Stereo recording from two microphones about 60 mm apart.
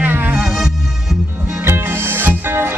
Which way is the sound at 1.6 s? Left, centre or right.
Right.